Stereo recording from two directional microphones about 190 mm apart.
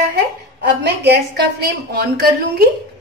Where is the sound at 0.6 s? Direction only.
65° right (ahead or behind).